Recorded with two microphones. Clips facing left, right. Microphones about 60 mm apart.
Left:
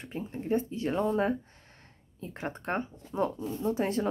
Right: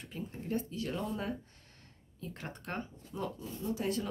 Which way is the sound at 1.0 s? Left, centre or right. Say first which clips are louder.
Left 14 dB; left.